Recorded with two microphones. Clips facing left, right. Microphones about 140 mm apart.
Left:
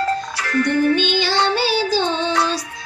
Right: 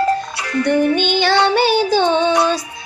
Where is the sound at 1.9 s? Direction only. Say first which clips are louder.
Right 5 dB; 55° right (ahead or behind).